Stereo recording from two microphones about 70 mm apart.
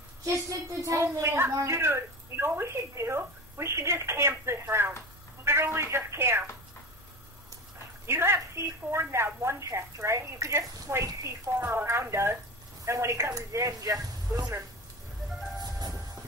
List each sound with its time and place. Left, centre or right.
0.2 s a woman's voice: right
8.1 s a woman's voice: right